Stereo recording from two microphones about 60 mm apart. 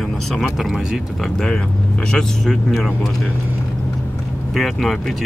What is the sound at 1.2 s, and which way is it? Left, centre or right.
Speech, centre.